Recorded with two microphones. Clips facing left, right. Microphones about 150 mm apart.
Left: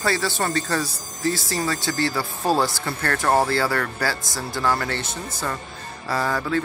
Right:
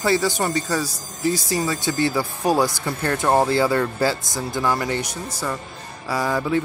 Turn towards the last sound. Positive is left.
turn(degrees=-15)  # may be behind; listen again after turning